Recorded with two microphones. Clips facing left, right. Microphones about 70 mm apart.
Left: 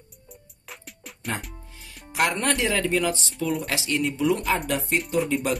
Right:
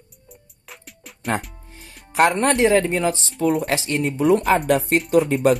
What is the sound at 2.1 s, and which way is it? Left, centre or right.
Speech, right.